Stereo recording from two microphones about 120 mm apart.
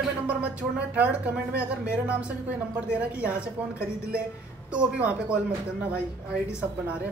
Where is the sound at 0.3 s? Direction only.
10° right (ahead or behind).